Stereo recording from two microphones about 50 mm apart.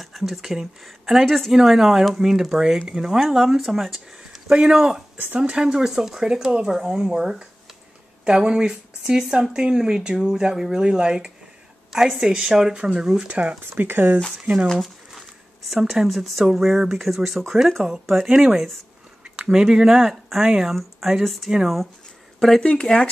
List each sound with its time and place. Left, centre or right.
0.0 s speech: centre
13.3 s speech: right
13.7 s speech: right
14.4 s speech: right
14.7 s a sound: centre
15.9 s speech: centre
22.6 s speech: left